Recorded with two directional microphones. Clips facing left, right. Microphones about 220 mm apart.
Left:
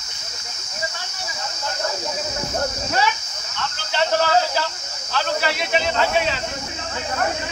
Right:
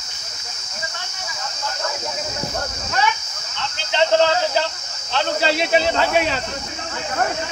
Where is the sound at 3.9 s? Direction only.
20° right (ahead or behind).